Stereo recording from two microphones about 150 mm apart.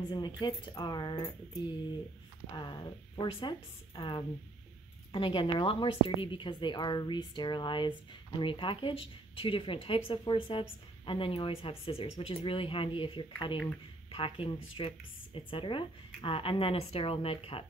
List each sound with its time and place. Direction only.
0.4 s speech: 30° left (ahead or behind)